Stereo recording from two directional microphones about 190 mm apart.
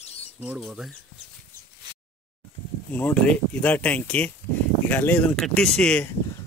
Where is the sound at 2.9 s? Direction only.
10° left (ahead or behind).